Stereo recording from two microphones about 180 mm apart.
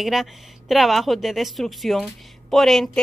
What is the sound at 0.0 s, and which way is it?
A woman's voice, centre (ahead or behind).